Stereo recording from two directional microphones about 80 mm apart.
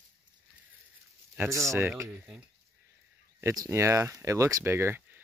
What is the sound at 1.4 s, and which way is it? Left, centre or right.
Speech, right.